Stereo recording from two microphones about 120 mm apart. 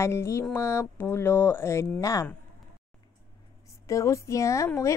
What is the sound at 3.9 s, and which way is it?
Speech, 25° left (ahead or behind).